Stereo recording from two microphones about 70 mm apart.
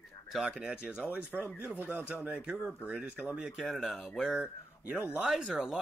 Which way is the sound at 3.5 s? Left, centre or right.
Centre.